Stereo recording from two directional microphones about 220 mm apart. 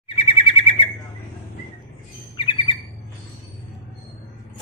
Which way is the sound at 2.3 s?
20° left (ahead or behind).